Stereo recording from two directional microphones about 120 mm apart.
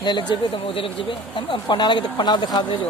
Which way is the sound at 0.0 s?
40° left (ahead or behind).